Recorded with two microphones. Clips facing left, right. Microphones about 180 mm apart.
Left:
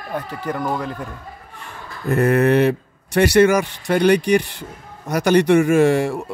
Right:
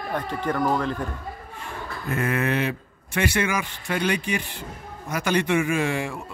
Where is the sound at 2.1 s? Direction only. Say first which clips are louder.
Left 9 dB; 45° left (ahead or behind).